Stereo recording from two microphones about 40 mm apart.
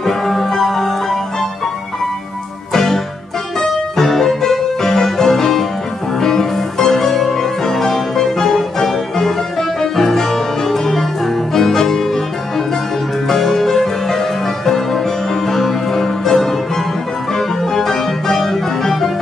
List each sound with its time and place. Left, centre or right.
0.0 s music: centre
2.7 s music: centre
17.3 s keyboard: centre